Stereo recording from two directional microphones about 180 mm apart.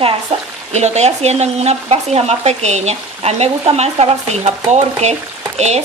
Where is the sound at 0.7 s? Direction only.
40° right (ahead or behind).